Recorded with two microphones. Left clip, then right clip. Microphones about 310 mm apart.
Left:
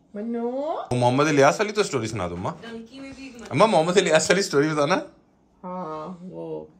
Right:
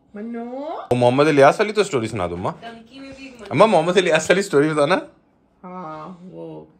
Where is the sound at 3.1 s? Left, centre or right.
Left.